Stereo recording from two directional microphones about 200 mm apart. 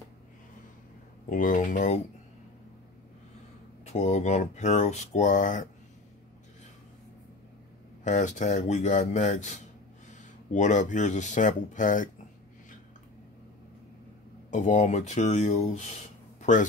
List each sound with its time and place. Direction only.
1.3 s speech: 40° left (ahead or behind)
3.8 s speech: 35° left (ahead or behind)
8.0 s speech: 40° left (ahead or behind)
14.5 s speech: 35° left (ahead or behind)
16.3 s a sound: 40° left (ahead or behind)